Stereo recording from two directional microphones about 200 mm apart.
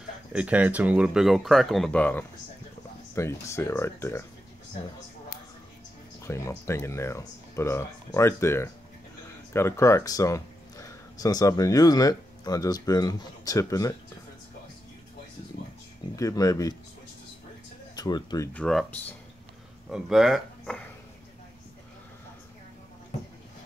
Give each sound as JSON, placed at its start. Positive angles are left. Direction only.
{"t": 0.3, "sound": "speech", "side_deg": -5}
{"t": 6.2, "sound": "speech", "side_deg": 15}
{"t": 16.2, "sound": "speech", "side_deg": 15}
{"t": 17.9, "sound": "speech", "side_deg": 20}
{"t": 18.5, "sound": "speech", "side_deg": 5}